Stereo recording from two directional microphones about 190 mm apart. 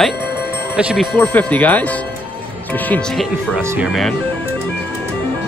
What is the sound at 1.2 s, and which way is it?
A man's voice, 10° left (ahead or behind).